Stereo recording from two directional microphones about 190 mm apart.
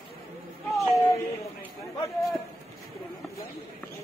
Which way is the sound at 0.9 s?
15° left (ahead or behind).